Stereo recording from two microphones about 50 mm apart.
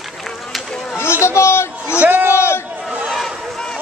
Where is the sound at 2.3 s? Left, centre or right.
Left.